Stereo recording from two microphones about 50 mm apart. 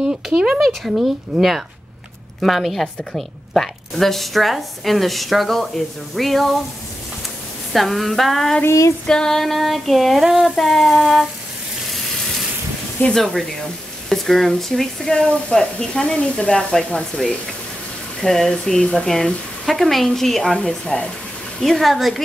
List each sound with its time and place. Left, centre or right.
0.0 s speech: centre
0.6 s a woman's voice: centre
7.7 s a woman's voice: centre
8.6 s female singing: left
9.0 s a woman's voice: centre
11.9 s frying: centre
13.1 s a woman's voice: centre
15.2 s speech: left
18.2 s a woman's voice: centre
20.4 s speech: centre
21.5 s a woman's voice: centre